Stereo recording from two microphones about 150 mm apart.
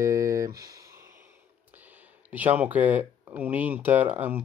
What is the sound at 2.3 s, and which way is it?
Speech, 10° right (ahead or behind).